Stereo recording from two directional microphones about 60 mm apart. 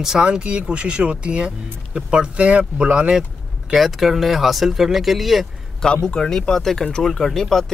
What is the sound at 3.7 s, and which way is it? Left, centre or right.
Speech, centre.